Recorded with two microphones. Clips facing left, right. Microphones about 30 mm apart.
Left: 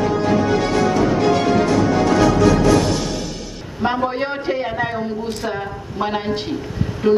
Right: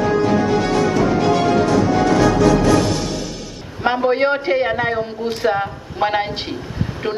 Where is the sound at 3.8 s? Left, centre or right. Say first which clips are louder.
Right 4 dB; right.